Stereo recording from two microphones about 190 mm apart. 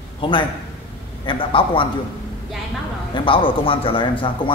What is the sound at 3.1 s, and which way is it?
A man's voice, 25° left (ahead or behind).